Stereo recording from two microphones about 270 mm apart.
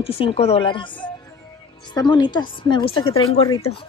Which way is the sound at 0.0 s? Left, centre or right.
Left.